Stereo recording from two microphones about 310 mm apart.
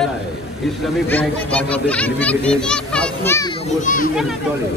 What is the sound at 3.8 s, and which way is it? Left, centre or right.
Speech, left.